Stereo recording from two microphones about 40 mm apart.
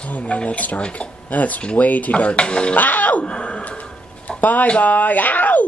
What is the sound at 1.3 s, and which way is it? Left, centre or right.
Dishes, left.